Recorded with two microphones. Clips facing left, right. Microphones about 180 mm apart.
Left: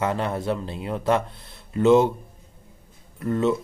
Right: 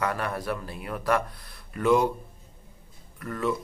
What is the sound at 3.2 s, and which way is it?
Speech, 25° left (ahead or behind).